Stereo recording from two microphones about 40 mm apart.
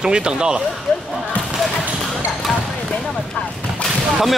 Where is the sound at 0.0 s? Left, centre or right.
Right.